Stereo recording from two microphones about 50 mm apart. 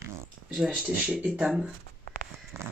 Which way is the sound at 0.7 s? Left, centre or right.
Right.